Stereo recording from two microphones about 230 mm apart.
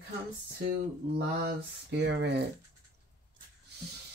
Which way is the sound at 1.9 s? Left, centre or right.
Right.